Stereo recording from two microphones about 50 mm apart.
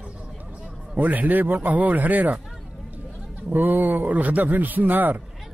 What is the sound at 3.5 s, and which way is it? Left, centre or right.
A man's voice, right.